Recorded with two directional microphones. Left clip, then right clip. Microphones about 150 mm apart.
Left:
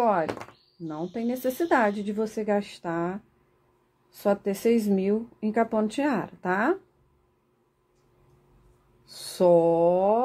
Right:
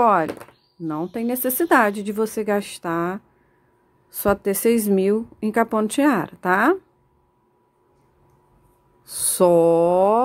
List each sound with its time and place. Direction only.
0.0 s speech: 60° right (ahead or behind)
9.0 s speech: 60° right (ahead or behind)